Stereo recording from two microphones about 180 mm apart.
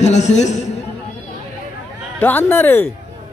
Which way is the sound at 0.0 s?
40° left (ahead or behind).